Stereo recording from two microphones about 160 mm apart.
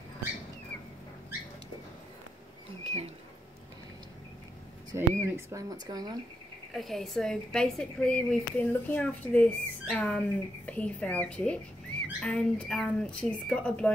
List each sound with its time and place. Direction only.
2.8 s rodents: 40° right (ahead or behind)
4.9 s speech: 15° right (ahead or behind)
6.7 s speech: centre (ahead or behind)